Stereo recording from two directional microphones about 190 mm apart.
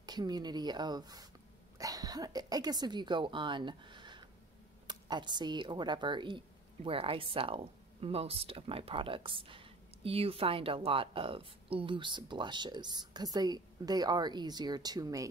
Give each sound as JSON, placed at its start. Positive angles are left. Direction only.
{"t": 0.0, "sound": "speech", "side_deg": -20}